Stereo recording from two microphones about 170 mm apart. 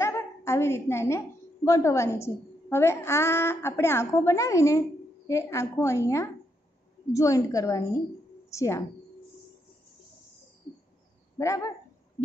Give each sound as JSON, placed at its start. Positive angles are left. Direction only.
{"t": 0.0, "sound": "a woman's voice", "side_deg": 15}
{"t": 11.3, "sound": "a woman's voice", "side_deg": 20}